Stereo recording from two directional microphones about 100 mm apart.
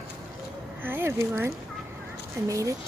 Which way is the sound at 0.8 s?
20° right (ahead or behind).